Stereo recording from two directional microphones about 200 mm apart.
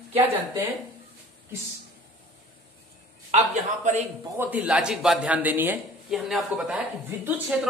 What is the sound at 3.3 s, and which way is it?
Speech, 35° right (ahead or behind).